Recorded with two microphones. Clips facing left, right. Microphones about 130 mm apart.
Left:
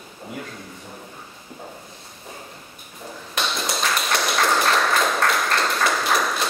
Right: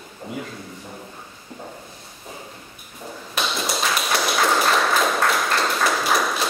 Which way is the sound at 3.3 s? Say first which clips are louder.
Right 1 dB; 5° right (ahead or behind).